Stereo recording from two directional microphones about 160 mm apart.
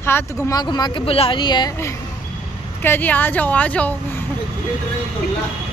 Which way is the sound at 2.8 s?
10° left (ahead or behind).